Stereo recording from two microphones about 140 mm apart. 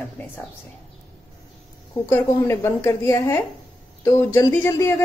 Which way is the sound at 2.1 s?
20° left (ahead or behind).